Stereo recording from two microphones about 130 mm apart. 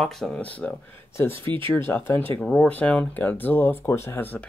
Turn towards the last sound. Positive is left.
turn(degrees=15)  # may be behind; listen again after turning